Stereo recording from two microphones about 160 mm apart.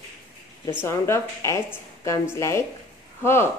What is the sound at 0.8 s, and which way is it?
A woman's voice, 15° left (ahead or behind).